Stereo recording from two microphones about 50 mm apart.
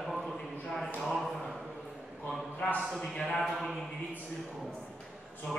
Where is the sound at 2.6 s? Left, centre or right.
Left.